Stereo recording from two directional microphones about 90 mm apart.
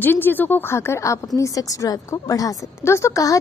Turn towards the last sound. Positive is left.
turn(degrees=35)  # may be behind; listen again after turning